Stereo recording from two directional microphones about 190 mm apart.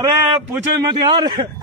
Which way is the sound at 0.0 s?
20° right (ahead or behind).